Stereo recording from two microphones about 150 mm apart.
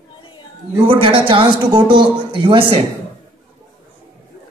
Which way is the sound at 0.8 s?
35° right (ahead or behind).